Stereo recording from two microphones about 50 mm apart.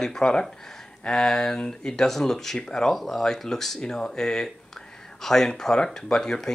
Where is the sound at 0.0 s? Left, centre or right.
Centre.